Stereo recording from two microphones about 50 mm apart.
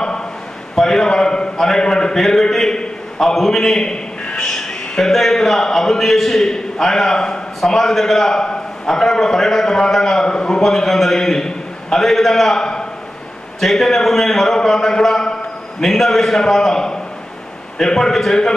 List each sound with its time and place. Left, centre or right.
0.0 s a sound: centre
0.7 s a man's voice: centre
10.6 s a man's voice: centre